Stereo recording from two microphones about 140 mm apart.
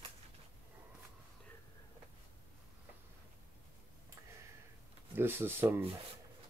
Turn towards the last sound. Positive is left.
turn(degrees=-15)  # may be behind; listen again after turning